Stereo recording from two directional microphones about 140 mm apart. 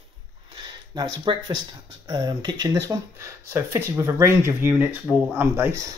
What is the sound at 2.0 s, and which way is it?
Speech, 30° right (ahead or behind).